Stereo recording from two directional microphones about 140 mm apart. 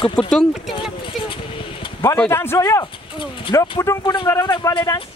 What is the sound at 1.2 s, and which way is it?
Vehicle, 35° left (ahead or behind).